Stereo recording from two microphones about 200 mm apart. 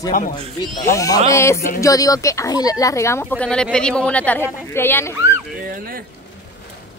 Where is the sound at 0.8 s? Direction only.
15° left (ahead or behind).